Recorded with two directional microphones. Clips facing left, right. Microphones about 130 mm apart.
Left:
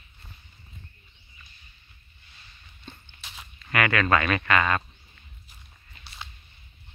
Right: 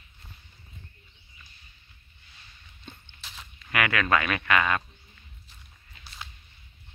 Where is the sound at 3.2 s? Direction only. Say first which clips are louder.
Left 1 dB; 10° left (ahead or behind).